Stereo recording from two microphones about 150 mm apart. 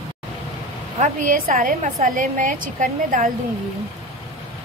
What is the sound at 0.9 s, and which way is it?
A woman's voice, 60° right (ahead or behind).